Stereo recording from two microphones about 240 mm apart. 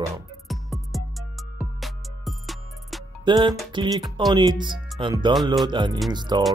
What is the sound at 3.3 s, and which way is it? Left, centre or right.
Speech, centre.